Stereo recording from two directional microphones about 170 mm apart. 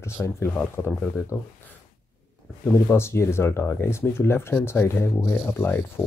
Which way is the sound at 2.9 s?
15° left (ahead or behind).